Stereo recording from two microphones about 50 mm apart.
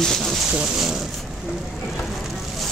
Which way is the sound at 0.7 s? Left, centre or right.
Centre.